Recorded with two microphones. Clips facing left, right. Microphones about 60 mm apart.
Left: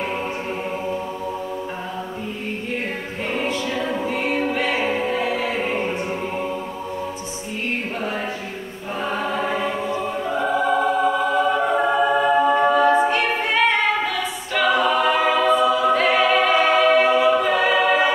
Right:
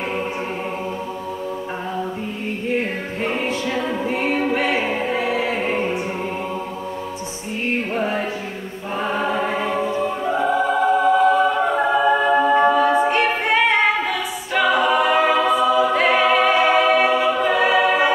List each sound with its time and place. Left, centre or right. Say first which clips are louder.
3.3 s a capella: left 2 dB; centre
4.1 s choir: right 2 dB; right
4.6 s music: right 1 dB; centre
5.6 s music: right 2 dB; centre
9.1 s choir: right 2 dB; centre
13.2 s a capella: right 2 dB; centre